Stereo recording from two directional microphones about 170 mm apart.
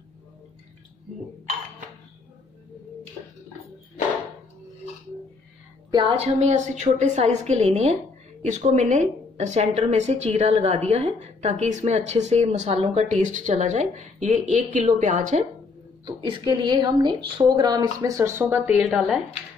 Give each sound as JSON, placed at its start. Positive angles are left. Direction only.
{"t": 5.9, "sound": "a woman's voice", "side_deg": -25}
{"t": 16.1, "sound": "a woman's voice", "side_deg": -30}